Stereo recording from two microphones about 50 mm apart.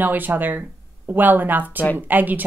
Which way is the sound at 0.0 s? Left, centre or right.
Right.